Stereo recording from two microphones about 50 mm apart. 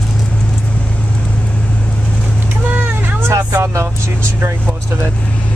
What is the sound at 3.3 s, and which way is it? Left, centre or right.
Speech, right.